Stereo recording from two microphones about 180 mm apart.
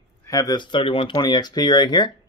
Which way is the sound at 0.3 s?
20° left (ahead or behind).